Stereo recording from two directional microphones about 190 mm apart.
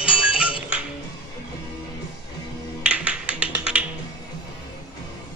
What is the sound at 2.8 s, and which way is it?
Music, 5° right (ahead or behind).